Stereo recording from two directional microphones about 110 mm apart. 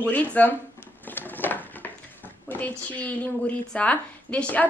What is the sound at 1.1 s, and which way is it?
Patter, 15° left (ahead or behind).